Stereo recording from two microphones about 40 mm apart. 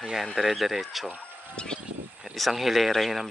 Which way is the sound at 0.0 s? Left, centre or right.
Centre.